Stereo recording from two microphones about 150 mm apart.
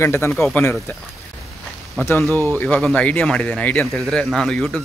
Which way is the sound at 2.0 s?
15° left (ahead or behind).